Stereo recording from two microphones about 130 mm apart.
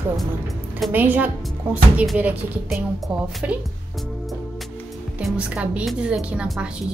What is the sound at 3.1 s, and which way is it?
Speech, 5° right (ahead or behind).